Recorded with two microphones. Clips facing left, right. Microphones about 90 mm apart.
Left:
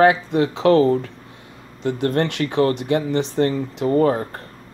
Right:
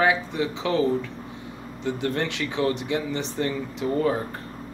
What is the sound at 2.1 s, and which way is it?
Speech, 55° left (ahead or behind).